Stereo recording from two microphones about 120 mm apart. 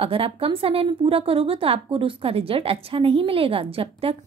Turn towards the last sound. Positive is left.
turn(degrees=-55)  # may be behind; listen again after turning